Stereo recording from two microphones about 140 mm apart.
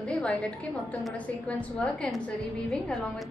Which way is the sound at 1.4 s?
5° left (ahead or behind).